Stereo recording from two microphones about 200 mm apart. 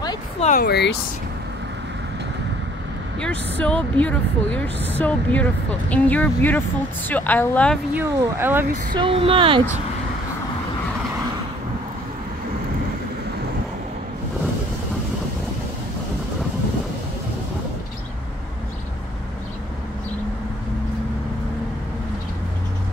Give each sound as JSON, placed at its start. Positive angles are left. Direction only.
{"t": 0.4, "sound": "speech", "side_deg": 40}
{"t": 0.7, "sound": "speech", "side_deg": 55}
{"t": 3.2, "sound": "speech", "side_deg": 5}
{"t": 7.9, "sound": "speech", "side_deg": -10}
{"t": 8.9, "sound": "speech", "side_deg": -25}